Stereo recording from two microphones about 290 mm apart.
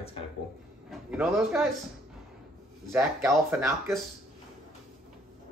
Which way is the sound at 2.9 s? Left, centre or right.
Centre.